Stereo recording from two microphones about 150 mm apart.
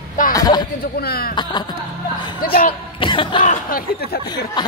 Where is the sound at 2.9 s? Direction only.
35° left (ahead or behind).